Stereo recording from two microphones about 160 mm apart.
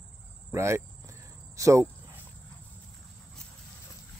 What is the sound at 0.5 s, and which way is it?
Speech, 15° right (ahead or behind).